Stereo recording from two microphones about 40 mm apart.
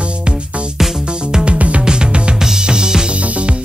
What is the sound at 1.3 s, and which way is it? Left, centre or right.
Music, right.